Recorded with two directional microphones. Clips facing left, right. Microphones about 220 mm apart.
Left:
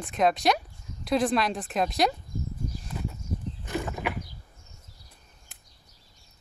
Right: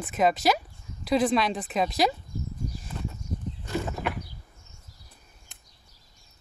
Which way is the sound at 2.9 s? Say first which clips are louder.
Left 1 dB; 5° left (ahead or behind).